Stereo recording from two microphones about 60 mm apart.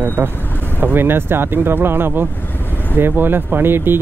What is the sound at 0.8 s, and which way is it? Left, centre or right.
Speech, right.